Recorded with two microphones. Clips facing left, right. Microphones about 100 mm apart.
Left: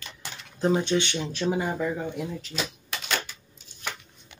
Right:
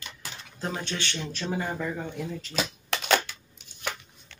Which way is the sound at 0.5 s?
20° left (ahead or behind).